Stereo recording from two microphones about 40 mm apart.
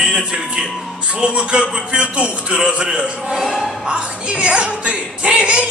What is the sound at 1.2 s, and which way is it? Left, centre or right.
A woman's voice, right.